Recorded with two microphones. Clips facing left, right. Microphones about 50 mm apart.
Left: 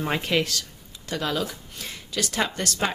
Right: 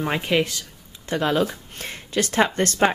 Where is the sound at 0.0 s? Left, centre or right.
Centre.